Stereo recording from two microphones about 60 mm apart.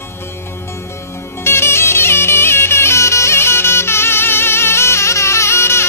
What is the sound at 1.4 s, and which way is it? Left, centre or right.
Music, left.